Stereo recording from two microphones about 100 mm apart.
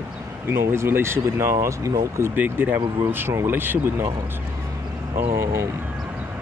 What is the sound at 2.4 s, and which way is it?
Speech, 20° right (ahead or behind).